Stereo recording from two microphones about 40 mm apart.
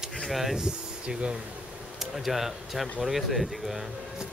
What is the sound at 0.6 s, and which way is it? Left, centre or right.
Speech, right.